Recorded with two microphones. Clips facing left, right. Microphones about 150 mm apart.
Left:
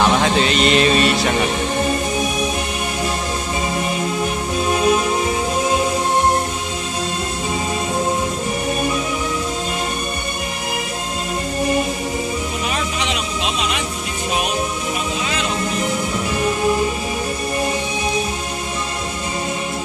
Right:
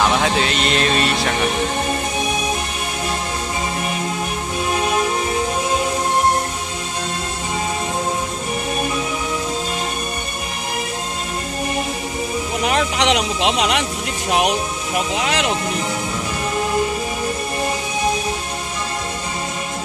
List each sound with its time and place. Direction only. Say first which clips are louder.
0.0 s speech: left 2 dB; centre (ahead or behind)
12.6 s music: right 9 dB; 70° right (ahead or behind)
15.1 s speech: right 3 dB; 75° right (ahead or behind)